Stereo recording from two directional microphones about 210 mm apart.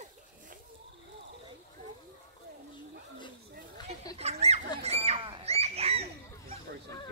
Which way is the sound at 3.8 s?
20° left (ahead or behind).